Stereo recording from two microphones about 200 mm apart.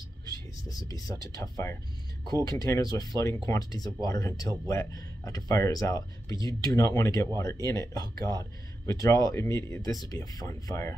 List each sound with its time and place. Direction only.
0.3 s speech: 20° left (ahead or behind)